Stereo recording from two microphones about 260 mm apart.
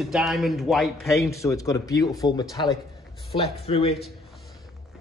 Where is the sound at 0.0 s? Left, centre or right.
Centre.